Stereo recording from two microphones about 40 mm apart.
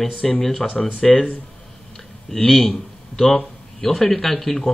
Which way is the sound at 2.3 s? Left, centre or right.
Centre.